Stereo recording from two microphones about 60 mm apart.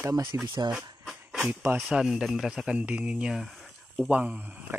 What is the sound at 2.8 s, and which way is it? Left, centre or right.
Speech, right.